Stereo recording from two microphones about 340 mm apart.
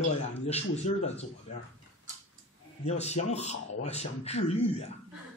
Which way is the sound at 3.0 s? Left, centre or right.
Centre.